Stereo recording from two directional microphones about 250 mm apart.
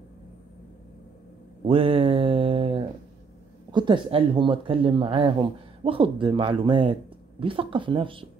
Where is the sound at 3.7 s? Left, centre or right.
Centre.